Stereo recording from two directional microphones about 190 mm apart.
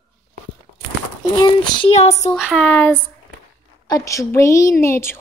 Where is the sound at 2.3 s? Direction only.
Centre (ahead or behind).